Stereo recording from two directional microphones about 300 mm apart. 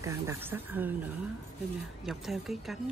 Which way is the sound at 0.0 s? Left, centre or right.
Centre.